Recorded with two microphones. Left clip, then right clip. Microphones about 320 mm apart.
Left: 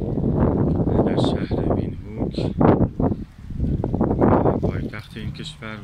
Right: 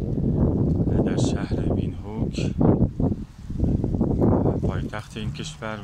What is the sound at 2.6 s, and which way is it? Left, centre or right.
Wind noise, left.